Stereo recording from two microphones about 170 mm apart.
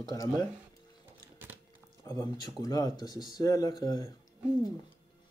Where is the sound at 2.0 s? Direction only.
20° left (ahead or behind).